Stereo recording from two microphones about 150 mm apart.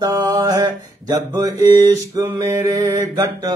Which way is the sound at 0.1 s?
25° right (ahead or behind).